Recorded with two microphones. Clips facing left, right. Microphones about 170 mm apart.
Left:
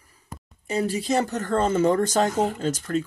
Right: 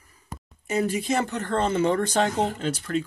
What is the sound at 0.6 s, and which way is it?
Speech, 35° left (ahead or behind).